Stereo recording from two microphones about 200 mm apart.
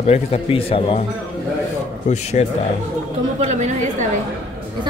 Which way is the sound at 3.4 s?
35° right (ahead or behind).